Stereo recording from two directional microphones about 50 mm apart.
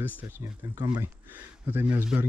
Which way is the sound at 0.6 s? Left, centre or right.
Right.